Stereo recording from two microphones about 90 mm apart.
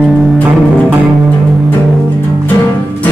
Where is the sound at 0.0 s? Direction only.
5° right (ahead or behind).